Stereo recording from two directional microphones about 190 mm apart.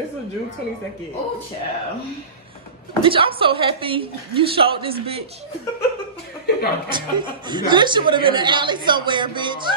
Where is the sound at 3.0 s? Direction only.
25° right (ahead or behind).